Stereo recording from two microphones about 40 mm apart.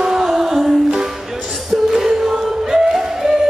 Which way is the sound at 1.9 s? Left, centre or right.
Centre.